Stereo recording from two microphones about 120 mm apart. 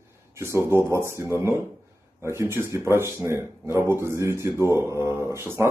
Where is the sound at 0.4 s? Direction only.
20° right (ahead or behind).